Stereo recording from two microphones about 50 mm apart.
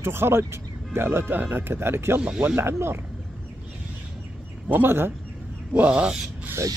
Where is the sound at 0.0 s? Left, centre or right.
Right.